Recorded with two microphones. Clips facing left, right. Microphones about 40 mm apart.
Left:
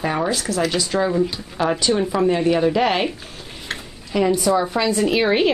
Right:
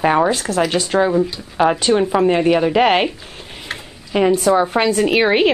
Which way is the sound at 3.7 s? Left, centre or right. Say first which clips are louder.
Right 2 dB; right.